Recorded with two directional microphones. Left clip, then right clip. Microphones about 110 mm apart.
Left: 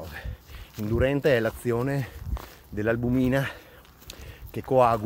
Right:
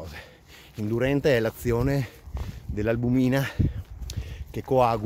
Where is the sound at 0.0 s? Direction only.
20° right (ahead or behind).